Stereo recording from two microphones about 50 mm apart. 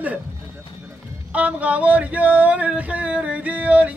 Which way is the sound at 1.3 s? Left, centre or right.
Right.